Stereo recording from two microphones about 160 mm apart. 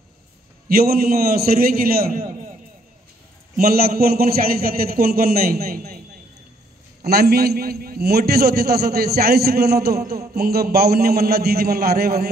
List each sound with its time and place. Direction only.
0.7 s a man's voice: 70° right (ahead or behind)
3.5 s a man's voice: 70° right (ahead or behind)
7.1 s a man's voice: 75° right (ahead or behind)